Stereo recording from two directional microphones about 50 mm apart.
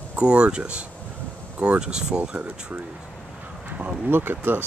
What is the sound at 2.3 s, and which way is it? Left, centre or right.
Speech, right.